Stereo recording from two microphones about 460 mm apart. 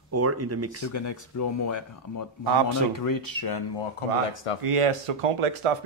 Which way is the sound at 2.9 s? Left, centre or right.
Left.